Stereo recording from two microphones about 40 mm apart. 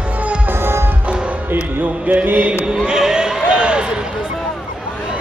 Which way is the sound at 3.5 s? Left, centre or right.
Right.